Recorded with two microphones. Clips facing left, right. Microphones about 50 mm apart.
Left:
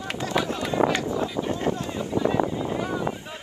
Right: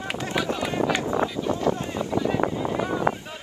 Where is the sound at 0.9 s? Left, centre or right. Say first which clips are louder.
Right 2 dB; right.